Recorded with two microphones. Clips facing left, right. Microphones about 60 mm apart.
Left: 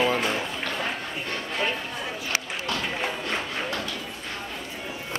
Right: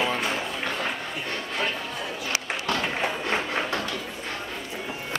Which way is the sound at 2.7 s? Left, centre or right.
Right.